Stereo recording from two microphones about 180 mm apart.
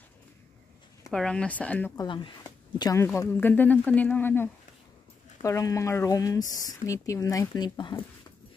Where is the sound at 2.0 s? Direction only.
25° left (ahead or behind).